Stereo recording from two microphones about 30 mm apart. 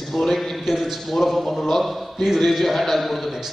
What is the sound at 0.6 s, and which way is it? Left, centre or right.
Speech, centre.